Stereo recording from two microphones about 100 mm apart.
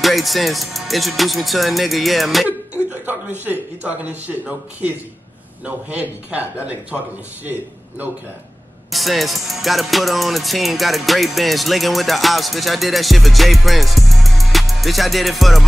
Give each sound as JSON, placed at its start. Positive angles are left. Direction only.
{"t": 0.0, "sound": "music", "side_deg": 0}
{"t": 2.4, "sound": "a sound", "side_deg": -15}
{"t": 3.8, "sound": "a man's voice", "side_deg": -15}
{"t": 8.9, "sound": "music", "side_deg": 0}